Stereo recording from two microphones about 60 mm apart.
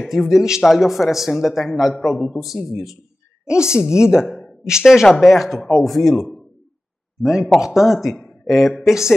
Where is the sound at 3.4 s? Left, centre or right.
Centre.